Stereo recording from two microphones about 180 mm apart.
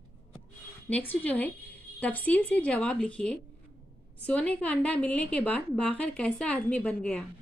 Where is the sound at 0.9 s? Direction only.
10° left (ahead or behind).